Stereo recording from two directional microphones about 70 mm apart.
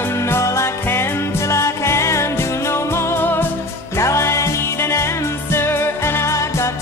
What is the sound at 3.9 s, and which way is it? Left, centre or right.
Music, left.